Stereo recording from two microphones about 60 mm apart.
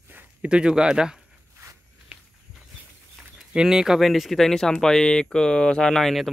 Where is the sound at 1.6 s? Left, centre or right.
Right.